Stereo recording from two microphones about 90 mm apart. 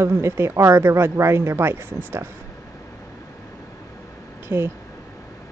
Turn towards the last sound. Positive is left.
turn(degrees=-30)  # may be behind; listen again after turning